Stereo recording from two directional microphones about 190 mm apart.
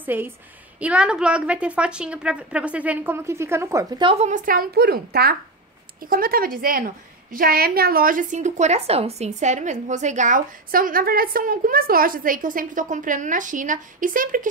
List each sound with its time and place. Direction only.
0.0 s a woman's voice: 10° right (ahead or behind); by 4.3 s 25° right (ahead or behind)
4.3 s a woman's voice: 45° right (ahead or behind)